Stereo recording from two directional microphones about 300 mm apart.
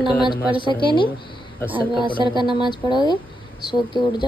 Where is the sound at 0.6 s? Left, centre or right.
Centre.